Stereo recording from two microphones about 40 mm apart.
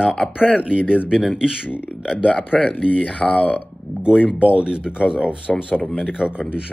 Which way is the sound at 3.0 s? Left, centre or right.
Left.